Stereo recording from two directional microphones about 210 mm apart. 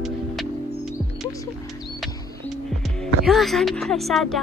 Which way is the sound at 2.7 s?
Centre (ahead or behind).